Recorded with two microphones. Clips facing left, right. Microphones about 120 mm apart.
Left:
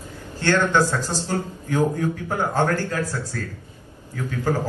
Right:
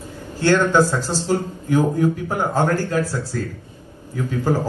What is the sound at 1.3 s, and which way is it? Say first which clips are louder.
A man's voice: right 5 dB; 15° right (ahead or behind).